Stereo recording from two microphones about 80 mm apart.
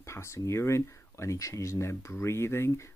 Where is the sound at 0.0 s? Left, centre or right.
Left.